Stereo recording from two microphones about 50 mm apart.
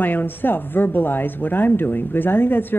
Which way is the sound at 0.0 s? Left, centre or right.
Left.